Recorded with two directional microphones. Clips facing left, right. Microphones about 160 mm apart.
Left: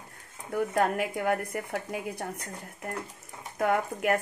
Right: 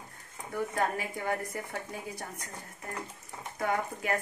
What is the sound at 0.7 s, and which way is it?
Speech, 65° left (ahead or behind).